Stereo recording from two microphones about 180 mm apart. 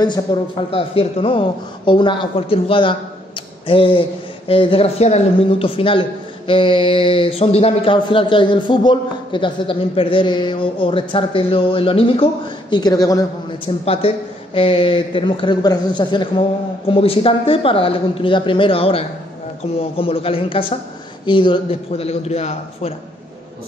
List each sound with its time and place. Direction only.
0.0 s a man's voice: 25° left (ahead or behind)
13.8 s a man's voice: 30° left (ahead or behind)